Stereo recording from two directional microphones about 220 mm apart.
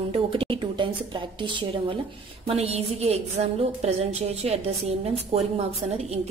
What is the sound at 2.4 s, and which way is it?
A woman's voice, 25° right (ahead or behind).